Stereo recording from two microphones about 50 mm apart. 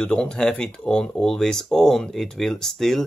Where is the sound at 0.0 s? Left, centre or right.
Centre.